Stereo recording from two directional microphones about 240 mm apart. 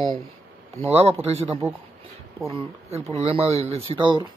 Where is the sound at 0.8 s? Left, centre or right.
Right.